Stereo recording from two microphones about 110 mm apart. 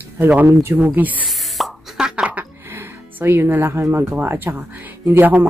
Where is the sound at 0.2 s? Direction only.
15° right (ahead or behind).